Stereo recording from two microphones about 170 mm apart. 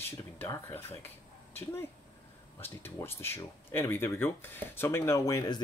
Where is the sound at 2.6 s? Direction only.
10° left (ahead or behind).